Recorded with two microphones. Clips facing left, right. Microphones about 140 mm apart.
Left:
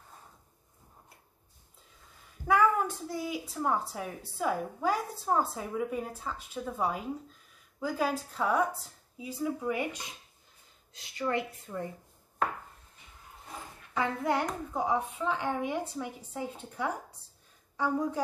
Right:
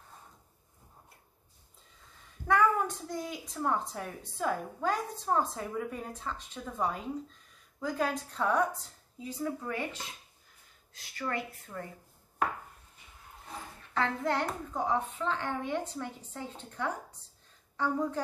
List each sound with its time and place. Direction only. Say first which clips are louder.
2.4 s a woman's voice: left 1 dB; 5° left (ahead or behind)
13.9 s a woman's voice: left 1 dB; 10° left (ahead or behind)